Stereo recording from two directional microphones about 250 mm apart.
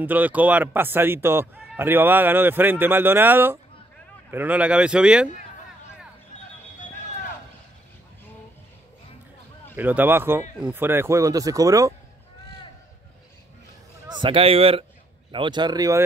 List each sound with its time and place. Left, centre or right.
0.0 s speech: centre
9.8 s speech: centre
14.0 s speech: centre